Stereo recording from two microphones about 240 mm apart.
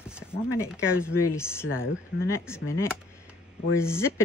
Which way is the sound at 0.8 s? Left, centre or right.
Centre.